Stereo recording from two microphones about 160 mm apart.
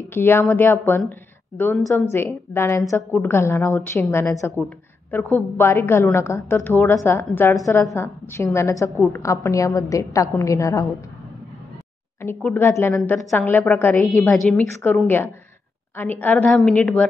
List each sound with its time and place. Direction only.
0.1 s a woman's voice: 15° left (ahead or behind)
2.1 s a woman's voice: 15° left (ahead or behind)
12.4 s a woman's voice: 10° left (ahead or behind)